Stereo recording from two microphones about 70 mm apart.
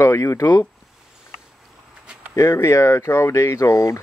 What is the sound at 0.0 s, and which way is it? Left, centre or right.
Speech, left.